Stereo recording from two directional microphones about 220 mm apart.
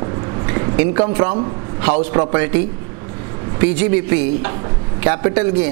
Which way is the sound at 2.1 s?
20° right (ahead or behind).